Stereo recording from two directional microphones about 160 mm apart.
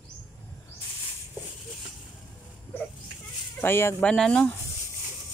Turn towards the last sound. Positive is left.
turn(degrees=5)  # may be behind; listen again after turning